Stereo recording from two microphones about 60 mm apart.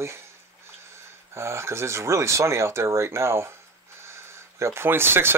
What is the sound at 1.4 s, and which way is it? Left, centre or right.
Speech, right.